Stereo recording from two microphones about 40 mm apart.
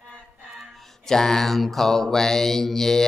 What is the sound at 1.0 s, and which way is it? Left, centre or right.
Mantra, centre.